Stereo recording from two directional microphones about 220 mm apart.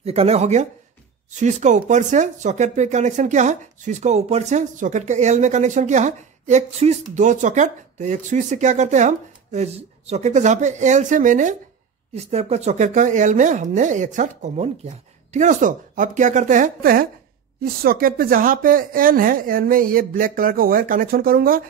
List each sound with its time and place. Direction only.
0.0 s speech: 30° right (ahead or behind)